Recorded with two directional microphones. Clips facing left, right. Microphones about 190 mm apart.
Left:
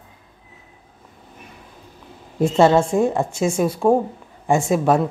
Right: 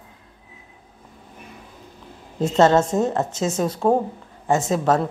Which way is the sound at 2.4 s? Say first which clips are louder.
Left 1 dB; 10° left (ahead or behind).